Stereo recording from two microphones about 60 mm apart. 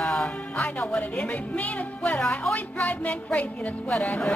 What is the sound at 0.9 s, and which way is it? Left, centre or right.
Speech, centre.